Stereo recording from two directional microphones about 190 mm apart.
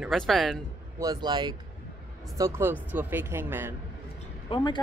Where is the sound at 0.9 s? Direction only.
20° right (ahead or behind).